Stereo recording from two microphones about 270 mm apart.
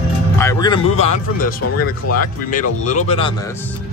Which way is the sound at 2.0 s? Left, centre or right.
Left.